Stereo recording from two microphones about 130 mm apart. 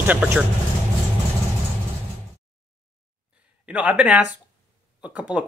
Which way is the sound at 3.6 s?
10° right (ahead or behind).